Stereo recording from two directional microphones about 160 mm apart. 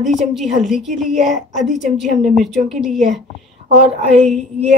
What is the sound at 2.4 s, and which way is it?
Speech, centre (ahead or behind).